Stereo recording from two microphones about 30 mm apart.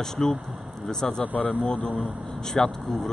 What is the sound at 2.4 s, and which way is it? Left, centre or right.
Speech, centre.